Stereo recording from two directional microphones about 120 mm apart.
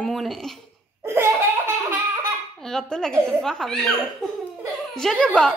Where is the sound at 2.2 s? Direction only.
5° left (ahead or behind).